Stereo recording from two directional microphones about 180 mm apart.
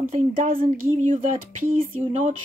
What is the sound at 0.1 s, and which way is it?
Speech, 50° right (ahead or behind).